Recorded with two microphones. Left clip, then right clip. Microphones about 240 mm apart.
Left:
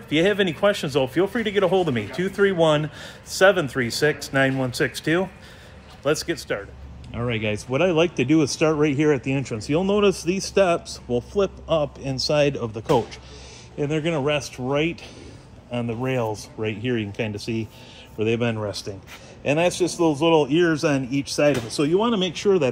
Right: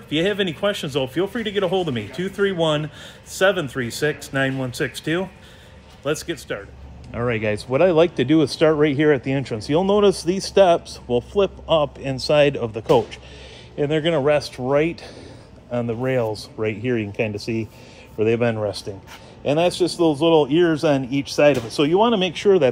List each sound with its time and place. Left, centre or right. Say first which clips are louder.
0.1 s speech: left 1 dB; centre
10.5 s speech: right 5 dB; centre
10.9 s speech: right 3 dB; centre
13.7 s speech: right 4 dB; centre